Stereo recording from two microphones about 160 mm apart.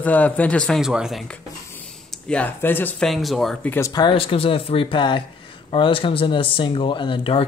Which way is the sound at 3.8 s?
25° left (ahead or behind).